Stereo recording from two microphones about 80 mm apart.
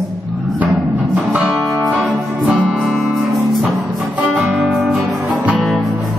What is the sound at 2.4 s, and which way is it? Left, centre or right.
Music, centre.